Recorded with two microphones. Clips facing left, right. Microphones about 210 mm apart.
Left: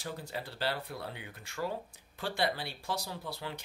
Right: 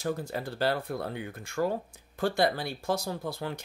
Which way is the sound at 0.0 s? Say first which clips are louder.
Right 8 dB; 45° right (ahead or behind).